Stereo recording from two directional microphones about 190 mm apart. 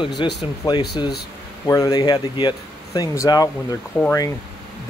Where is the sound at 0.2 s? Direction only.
25° left (ahead or behind).